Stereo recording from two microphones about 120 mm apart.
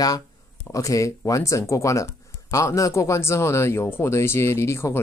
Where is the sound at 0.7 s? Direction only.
30° left (ahead or behind).